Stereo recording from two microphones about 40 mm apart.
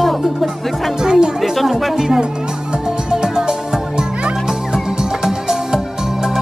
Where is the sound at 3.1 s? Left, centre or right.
Centre.